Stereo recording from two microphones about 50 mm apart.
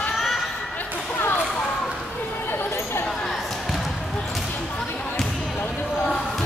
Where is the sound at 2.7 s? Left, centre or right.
Left.